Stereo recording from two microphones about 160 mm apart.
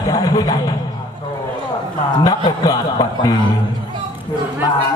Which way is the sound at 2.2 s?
25° left (ahead or behind).